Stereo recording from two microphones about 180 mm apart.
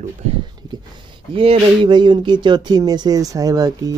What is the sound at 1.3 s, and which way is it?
Speech, 30° right (ahead or behind).